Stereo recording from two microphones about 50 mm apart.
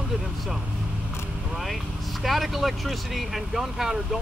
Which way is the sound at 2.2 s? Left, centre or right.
Centre.